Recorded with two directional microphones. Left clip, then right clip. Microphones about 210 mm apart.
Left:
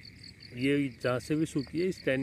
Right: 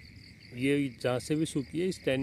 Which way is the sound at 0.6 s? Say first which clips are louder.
Even; 15° right (ahead or behind).